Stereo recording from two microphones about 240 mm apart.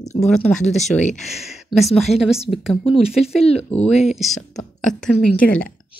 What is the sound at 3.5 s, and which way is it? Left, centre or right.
Speech, left.